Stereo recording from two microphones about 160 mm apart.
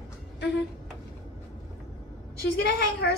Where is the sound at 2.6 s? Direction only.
90° left.